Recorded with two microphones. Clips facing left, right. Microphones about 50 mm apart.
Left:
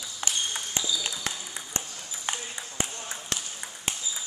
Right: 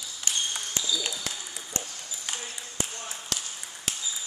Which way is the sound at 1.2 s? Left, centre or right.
Left.